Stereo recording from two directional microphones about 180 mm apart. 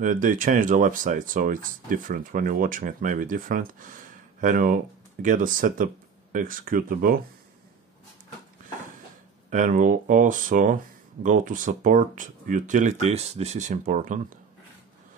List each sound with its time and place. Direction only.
0.0 s speech: 45° right (ahead or behind)
9.5 s speech: 45° right (ahead or behind)